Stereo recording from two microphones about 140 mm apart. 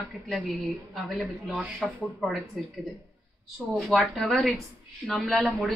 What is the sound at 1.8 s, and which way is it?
Speech, centre (ahead or behind).